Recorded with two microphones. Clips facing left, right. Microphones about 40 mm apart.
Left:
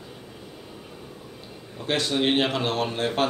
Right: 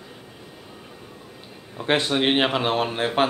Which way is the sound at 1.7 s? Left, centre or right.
Right.